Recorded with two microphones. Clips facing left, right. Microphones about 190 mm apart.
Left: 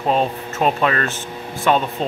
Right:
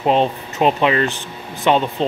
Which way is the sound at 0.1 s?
25° right (ahead or behind).